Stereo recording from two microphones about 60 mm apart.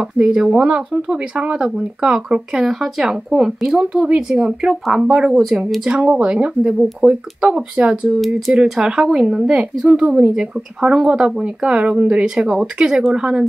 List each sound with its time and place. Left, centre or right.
0.0 s speech: centre
5.3 s speech: centre
5.9 s speech: centre
8.2 s speech: centre